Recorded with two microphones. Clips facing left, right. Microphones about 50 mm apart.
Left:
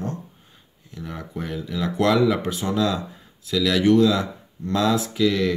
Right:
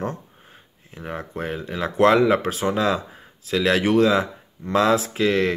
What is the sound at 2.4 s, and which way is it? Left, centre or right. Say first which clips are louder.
Speech: right 3 dB; right.